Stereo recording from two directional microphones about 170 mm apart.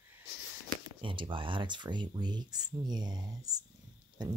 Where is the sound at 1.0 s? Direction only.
30° right (ahead or behind).